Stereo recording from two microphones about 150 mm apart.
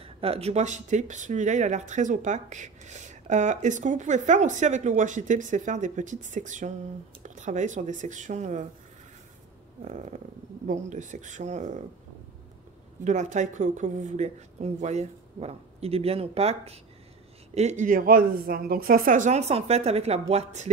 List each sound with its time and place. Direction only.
0.0 s speech: 40° right (ahead or behind)
9.8 s speech: 55° right (ahead or behind)
13.0 s speech: 55° right (ahead or behind)